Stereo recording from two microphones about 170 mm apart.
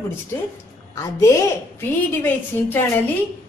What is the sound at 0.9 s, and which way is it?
A woman's voice, 20° left (ahead or behind).